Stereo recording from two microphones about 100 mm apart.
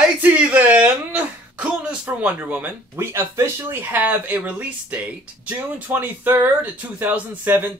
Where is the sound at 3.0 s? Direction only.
25° right (ahead or behind).